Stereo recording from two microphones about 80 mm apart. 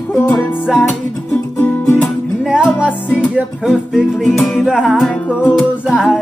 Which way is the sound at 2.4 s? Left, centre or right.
Centre.